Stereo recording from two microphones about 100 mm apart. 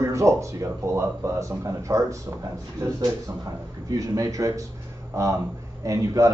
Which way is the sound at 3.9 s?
35° right (ahead or behind).